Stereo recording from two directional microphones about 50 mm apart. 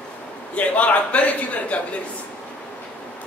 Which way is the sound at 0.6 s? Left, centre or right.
Left.